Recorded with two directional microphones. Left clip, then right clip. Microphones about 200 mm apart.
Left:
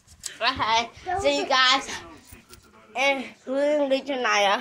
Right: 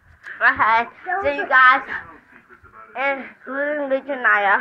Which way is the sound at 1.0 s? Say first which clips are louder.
Right 2 dB; centre (ahead or behind).